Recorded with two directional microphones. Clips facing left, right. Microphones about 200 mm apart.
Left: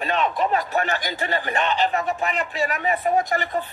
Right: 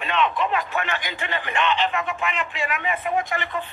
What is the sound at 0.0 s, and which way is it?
Speech, 40° left (ahead or behind).